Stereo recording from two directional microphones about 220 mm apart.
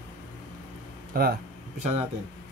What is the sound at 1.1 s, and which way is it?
Speech, 40° right (ahead or behind).